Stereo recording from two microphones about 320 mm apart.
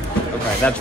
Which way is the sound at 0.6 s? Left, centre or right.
Centre.